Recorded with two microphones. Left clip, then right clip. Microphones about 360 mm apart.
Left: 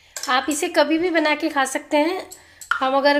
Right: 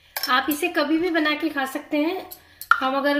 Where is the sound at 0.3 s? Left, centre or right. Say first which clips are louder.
Left 1 dB; centre.